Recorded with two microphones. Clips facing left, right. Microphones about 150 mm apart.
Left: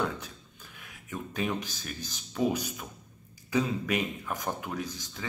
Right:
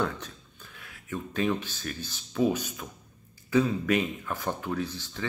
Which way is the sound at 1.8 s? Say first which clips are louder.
Right 3 dB; 15° left (ahead or behind).